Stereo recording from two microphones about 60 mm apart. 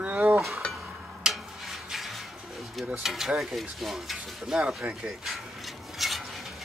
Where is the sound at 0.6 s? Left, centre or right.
Centre.